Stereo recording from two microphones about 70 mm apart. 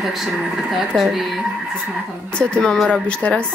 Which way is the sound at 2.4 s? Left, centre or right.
Centre.